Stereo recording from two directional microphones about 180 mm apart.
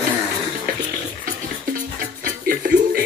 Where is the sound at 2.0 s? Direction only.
55° right (ahead or behind).